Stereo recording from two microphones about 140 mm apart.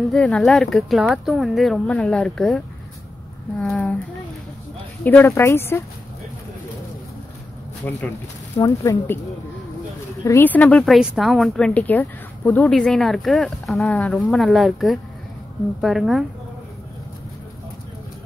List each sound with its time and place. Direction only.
0.1 s speech: 5° left (ahead or behind)
5.0 s speech: 15° left (ahead or behind)
7.8 s speech: 10° left (ahead or behind)
8.5 s speech: 25° left (ahead or behind)
10.2 s speech: 15° left (ahead or behind); by 16.3 s centre (ahead or behind)